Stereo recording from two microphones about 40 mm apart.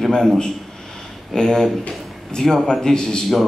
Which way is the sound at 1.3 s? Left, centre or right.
Centre.